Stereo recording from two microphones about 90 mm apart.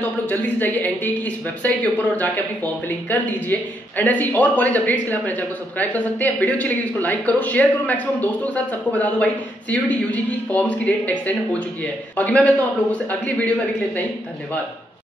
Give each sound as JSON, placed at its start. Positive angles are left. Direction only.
{"t": 0.0, "sound": "speech", "side_deg": 20}